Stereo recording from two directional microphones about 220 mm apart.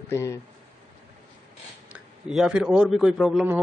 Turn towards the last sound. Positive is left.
turn(degrees=-5)  # may be behind; listen again after turning